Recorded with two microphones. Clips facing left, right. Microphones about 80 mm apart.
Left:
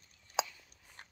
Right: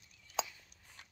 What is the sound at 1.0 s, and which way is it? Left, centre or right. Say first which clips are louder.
Biting: left 4 dB; left.